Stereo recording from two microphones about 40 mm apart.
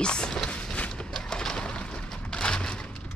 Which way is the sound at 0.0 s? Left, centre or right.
Left.